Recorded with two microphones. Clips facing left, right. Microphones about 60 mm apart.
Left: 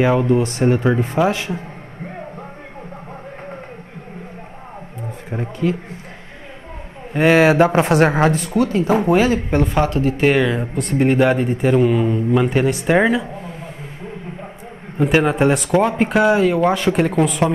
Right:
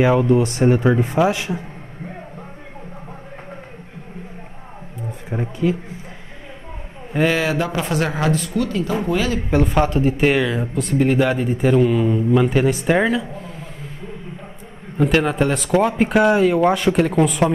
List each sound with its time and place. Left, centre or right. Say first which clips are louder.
0.0 s a man's voice: even; centre
5.3 s a man's voice: even; centre
7.2 s speech: left 9 dB; left
9.8 s speech: even; centre
10.2 s a man's voice: left 4 dB; centre
15.0 s a man's voice: left 2 dB; centre